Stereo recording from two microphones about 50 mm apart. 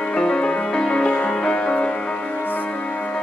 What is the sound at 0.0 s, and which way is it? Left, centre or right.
Music, left.